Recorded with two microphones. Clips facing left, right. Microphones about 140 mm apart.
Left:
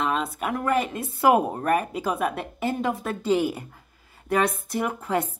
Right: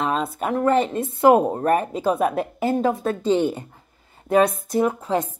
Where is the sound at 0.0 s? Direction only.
35° right (ahead or behind).